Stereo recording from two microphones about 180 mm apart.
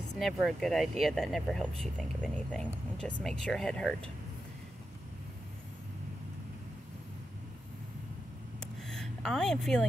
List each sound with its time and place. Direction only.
0.2 s speech: centre (ahead or behind)
8.5 s vehicle: centre (ahead or behind)